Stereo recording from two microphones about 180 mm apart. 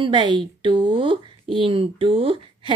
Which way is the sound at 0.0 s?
25° right (ahead or behind).